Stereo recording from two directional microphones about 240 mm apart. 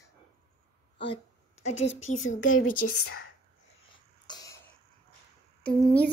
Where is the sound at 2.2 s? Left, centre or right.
Left.